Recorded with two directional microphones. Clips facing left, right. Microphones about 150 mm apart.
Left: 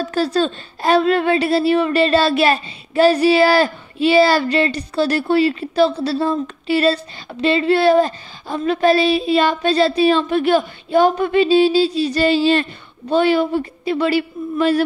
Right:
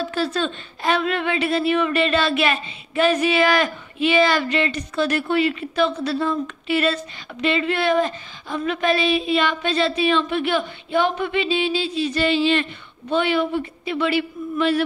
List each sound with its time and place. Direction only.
0.0 s a woman's voice: 40° left (ahead or behind)